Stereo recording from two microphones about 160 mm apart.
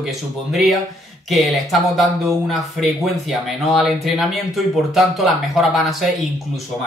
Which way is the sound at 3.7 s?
Centre (ahead or behind).